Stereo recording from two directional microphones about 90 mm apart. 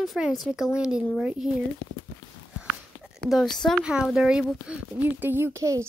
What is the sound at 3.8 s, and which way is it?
Speech, 10° right (ahead or behind).